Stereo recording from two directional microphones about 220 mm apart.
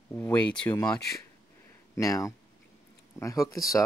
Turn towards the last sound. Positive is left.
turn(degrees=15)  # may be behind; listen again after turning